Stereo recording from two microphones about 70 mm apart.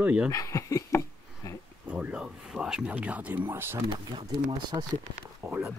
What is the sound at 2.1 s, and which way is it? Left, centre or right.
Speech, centre.